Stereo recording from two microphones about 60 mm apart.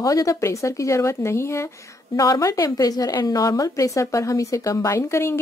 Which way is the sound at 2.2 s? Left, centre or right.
Left.